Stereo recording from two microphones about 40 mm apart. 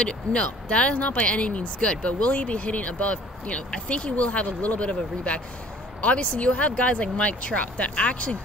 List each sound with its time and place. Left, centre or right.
0.0 s speech: left